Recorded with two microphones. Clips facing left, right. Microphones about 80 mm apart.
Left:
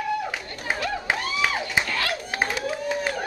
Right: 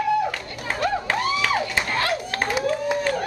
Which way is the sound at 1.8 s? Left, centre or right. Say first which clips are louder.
Right 3 dB; right.